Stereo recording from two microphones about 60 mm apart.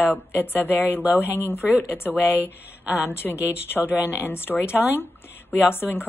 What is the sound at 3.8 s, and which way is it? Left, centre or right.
Speech, right.